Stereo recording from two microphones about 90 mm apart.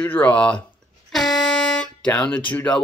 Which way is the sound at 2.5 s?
15° left (ahead or behind).